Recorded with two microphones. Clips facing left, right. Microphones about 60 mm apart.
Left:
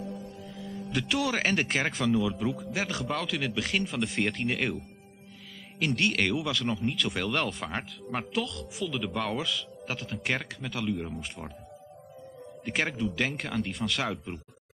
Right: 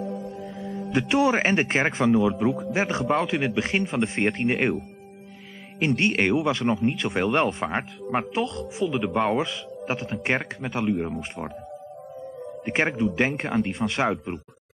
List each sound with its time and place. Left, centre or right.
0.1 s speech: right
5.8 s speech: right
12.6 s speech: right